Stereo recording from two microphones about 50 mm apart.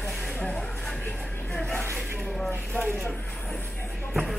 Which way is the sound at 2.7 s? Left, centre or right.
Left.